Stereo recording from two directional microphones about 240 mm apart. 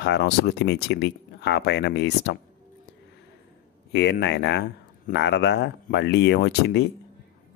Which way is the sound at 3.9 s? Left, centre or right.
Left.